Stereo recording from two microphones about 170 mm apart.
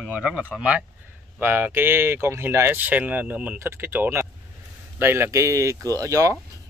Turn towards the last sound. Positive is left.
turn(degrees=-20)  # may be behind; listen again after turning